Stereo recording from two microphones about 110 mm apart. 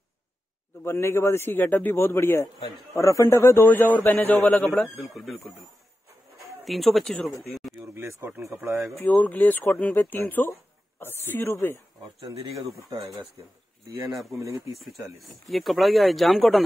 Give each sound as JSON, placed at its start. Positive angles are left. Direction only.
{"t": 0.8, "sound": "a man's voice", "side_deg": 25}
{"t": 4.6, "sound": "speech", "side_deg": 0}
{"t": 7.9, "sound": "speech", "side_deg": -20}
{"t": 8.9, "sound": "a man's voice", "side_deg": 15}
{"t": 12.3, "sound": "speech", "side_deg": -30}
{"t": 15.4, "sound": "speech", "side_deg": 0}